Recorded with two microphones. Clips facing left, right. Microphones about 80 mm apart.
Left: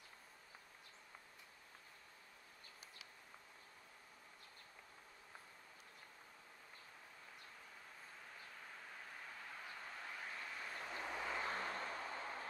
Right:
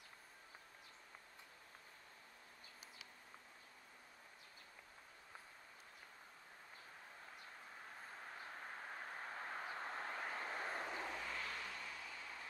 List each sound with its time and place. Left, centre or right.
8.7 s vehicle: right
11.1 s vehicle: centre
11.4 s vehicle: left